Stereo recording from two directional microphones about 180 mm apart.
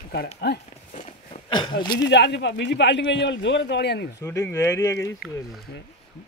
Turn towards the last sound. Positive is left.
turn(degrees=15)  # may be behind; listen again after turning